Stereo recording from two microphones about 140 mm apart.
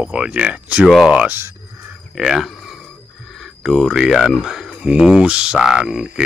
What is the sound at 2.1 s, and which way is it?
Speech, 5° right (ahead or behind).